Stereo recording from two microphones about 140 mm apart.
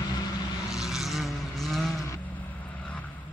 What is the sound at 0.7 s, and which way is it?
Vehicle, centre (ahead or behind).